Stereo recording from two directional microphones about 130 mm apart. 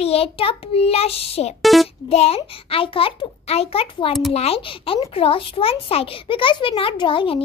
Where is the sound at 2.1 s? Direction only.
50° left (ahead or behind).